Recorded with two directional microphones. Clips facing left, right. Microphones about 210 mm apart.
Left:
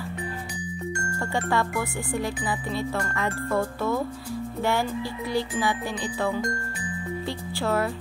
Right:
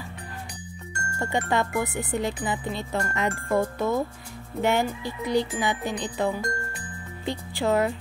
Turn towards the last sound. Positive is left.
turn(degrees=-20)  # may be behind; listen again after turning